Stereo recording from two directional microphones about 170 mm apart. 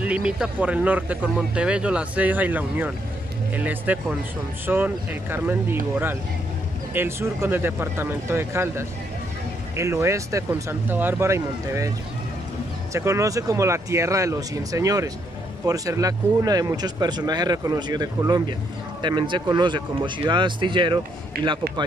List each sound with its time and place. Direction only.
0.0 s speech: 5° right (ahead or behind)
12.9 s speech: 15° right (ahead or behind)